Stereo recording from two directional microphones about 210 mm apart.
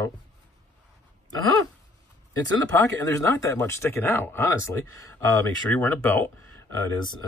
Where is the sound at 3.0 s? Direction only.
15° left (ahead or behind).